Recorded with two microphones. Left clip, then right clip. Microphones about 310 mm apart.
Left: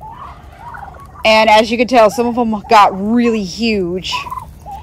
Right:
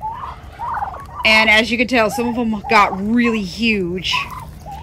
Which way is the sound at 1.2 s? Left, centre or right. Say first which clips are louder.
Left 3 dB; centre.